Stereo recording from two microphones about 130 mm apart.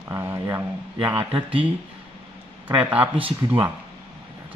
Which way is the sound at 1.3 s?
45° right (ahead or behind).